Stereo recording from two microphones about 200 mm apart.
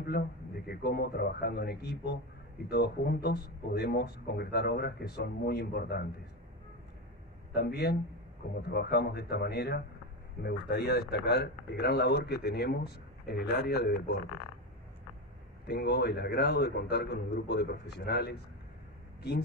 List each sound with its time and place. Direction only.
0.7 s speech: 50° left (ahead or behind)
7.5 s a man's voice: 55° left (ahead or behind)
15.6 s a man's voice: 55° left (ahead or behind)